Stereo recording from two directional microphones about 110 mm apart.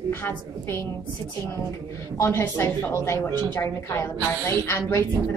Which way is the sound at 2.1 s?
25° left (ahead or behind).